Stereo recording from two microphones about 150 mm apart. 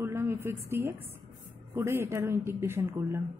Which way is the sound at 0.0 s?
15° right (ahead or behind).